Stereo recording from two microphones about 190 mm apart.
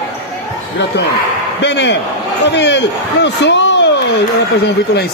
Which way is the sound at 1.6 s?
65° left (ahead or behind).